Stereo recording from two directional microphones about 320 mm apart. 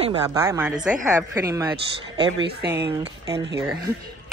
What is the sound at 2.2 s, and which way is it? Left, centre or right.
Speech, right.